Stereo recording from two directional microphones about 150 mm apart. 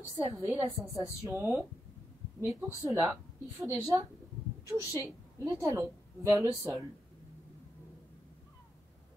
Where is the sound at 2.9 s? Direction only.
15° right (ahead or behind).